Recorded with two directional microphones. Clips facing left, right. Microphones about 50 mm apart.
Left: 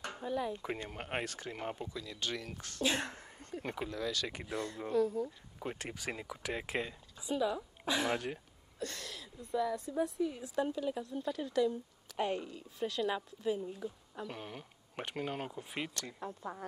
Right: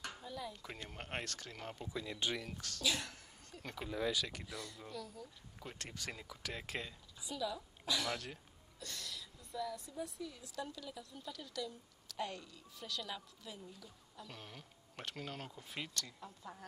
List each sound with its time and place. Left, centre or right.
0.0 s speech: left
0.8 s speech: centre
1.9 s speech: centre
2.5 s speech: left
3.9 s speech: centre
4.3 s speech: left
4.6 s speech: left
5.8 s speech: centre
8.7 s speech: left
16.2 s speech: left